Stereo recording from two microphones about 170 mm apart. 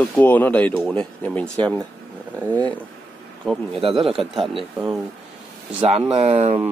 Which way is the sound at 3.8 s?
35° right (ahead or behind).